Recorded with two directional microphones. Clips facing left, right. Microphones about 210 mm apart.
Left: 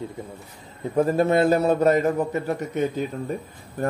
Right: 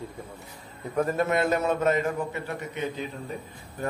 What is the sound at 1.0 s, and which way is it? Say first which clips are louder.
A man's voice: left 6 dB; 30° left (ahead or behind).